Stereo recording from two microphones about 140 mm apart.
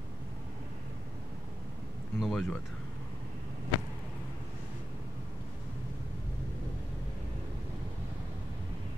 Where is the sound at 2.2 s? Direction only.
Centre (ahead or behind).